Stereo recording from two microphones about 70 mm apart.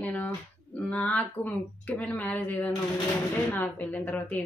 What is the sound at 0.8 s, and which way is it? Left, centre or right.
Speech, centre.